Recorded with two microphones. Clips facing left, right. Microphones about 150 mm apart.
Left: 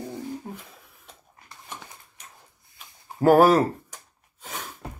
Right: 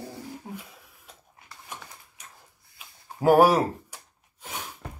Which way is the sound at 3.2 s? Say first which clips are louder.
Left 2 dB; 10° right (ahead or behind).